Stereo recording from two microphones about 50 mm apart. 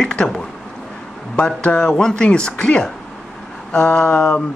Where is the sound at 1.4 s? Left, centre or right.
Centre.